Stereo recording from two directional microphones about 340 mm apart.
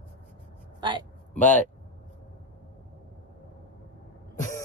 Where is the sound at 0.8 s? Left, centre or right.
Centre.